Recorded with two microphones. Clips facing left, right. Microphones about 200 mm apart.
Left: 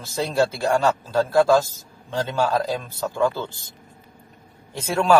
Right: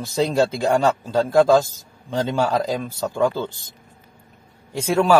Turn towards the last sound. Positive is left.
turn(degrees=-10)  # may be behind; listen again after turning